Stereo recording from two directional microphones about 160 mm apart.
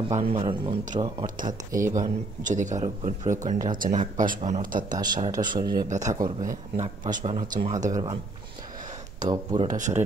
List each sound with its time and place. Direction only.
0.1 s a man's voice: 40° right (ahead or behind)
1.4 s speech: 20° right (ahead or behind)
1.9 s speech: 50° right (ahead or behind)
4.8 s speech: 25° right (ahead or behind)
6.8 s speech: 50° right (ahead or behind)
7.8 s speech: 25° right (ahead or behind)
9.2 s speech: 25° right (ahead or behind)
9.6 s speech: 50° right (ahead or behind)